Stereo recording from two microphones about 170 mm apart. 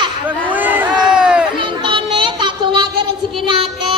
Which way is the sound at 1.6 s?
30° right (ahead or behind).